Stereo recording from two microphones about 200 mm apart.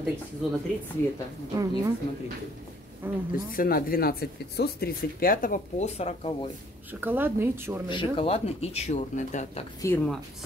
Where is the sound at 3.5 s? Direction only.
45° left (ahead or behind); by 6.5 s 30° left (ahead or behind).